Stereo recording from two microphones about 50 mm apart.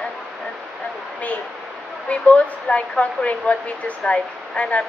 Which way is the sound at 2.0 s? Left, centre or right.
Left.